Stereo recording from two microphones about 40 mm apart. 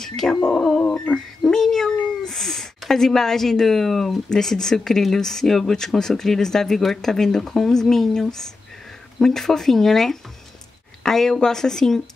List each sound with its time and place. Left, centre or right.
0.0 s speech: centre
0.8 s a sound: left
1.5 s cat: centre
2.9 s a woman's voice: centre